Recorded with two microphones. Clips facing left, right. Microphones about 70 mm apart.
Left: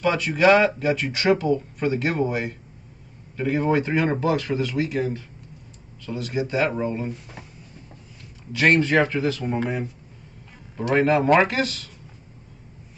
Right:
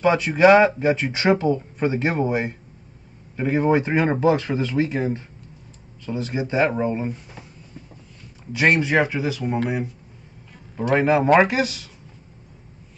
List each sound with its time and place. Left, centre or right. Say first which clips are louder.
0.0 s speech: right 3 dB; right
8.5 s speech: even; centre
10.8 s speech: right 1 dB; centre